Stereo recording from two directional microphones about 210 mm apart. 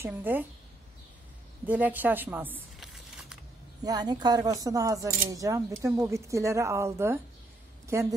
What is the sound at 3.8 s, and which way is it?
A woman's voice, 20° right (ahead or behind).